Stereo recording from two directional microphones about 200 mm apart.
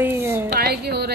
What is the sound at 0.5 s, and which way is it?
Speech, 55° right (ahead or behind).